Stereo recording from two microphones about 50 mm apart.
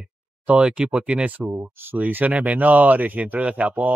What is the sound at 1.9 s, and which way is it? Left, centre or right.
Speech, right.